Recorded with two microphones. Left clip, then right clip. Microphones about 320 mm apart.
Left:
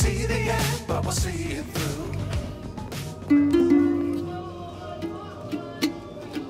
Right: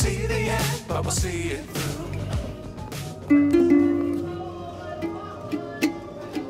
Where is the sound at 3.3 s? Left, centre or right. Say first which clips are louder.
Right 1 dB; centre.